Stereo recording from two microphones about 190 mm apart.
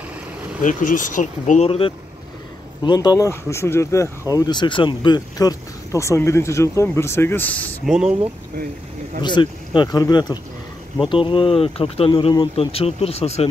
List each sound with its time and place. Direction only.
0.6 s speech: 45° left (ahead or behind); by 7.9 s 10° left (ahead or behind)
9.2 s speech: 25° left (ahead or behind)